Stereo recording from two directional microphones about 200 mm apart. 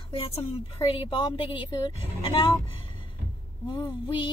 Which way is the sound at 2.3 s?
30° left (ahead or behind).